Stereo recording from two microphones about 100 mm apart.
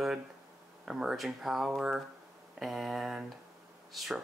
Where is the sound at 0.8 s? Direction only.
5° right (ahead or behind).